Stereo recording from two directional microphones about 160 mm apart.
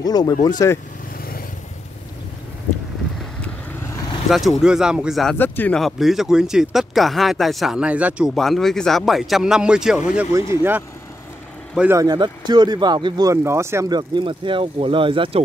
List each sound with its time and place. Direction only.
0.0 s speech: 25° left (ahead or behind)
4.3 s speech: centre (ahead or behind)
5.3 s speech: 10° left (ahead or behind); by 12.0 s 5° right (ahead or behind)
12.0 s speech: 25° right (ahead or behind)